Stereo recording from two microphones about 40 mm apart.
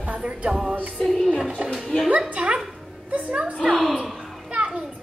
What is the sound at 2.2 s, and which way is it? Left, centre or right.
Dog, right.